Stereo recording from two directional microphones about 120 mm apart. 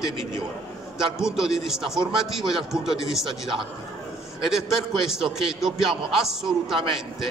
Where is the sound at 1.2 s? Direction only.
5° right (ahead or behind).